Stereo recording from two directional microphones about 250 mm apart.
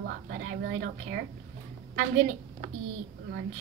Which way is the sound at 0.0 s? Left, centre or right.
Right.